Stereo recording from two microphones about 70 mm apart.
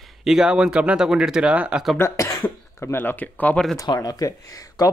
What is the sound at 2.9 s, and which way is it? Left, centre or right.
Speech, left.